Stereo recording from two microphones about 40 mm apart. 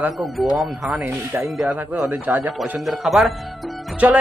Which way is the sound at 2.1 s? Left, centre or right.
Right.